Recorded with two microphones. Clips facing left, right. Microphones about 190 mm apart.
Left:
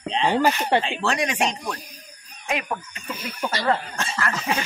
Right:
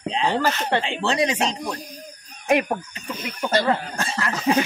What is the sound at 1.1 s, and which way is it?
Speech, 25° right (ahead or behind).